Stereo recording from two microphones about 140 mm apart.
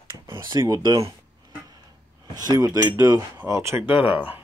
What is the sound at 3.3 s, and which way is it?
Speech, 20° right (ahead or behind).